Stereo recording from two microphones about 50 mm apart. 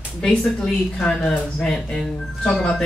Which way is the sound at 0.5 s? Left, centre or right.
Centre.